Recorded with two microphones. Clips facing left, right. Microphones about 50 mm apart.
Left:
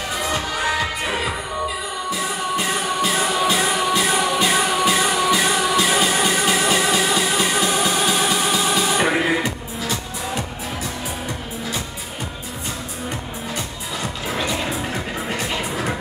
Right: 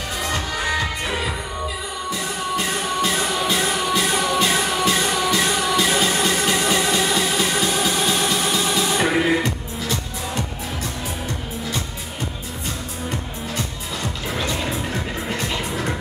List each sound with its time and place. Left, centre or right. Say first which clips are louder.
0.2 s music: left 1 dB; centre
13.6 s music: right 1 dB; centre